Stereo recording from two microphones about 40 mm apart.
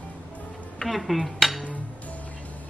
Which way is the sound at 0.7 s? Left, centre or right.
Centre.